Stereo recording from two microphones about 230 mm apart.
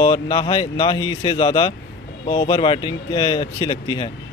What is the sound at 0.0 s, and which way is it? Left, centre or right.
Speech, centre.